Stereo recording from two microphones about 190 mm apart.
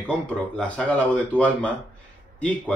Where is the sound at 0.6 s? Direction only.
5° left (ahead or behind).